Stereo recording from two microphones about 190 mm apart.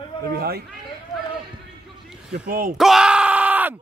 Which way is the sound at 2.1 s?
Centre (ahead or behind).